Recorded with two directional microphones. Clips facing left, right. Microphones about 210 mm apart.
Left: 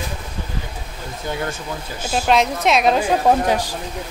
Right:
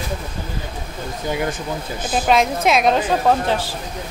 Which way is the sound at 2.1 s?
Centre (ahead or behind).